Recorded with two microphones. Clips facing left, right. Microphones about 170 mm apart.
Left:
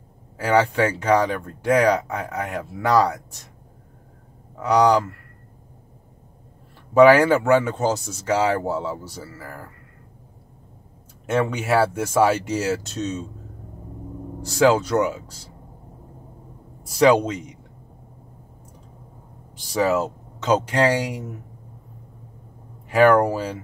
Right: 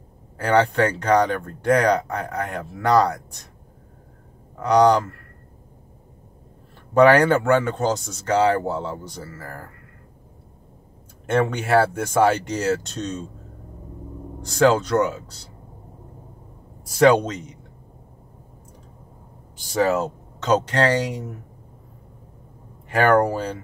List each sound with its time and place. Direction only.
0.4 s speech: 5° left (ahead or behind)
4.6 s speech: 5° left (ahead or behind)
6.9 s speech: 5° left (ahead or behind)
11.2 s speech: 5° left (ahead or behind)
14.4 s speech: 5° left (ahead or behind)
16.8 s speech: centre (ahead or behind)
19.6 s speech: centre (ahead or behind)
22.8 s speech: 5° left (ahead or behind)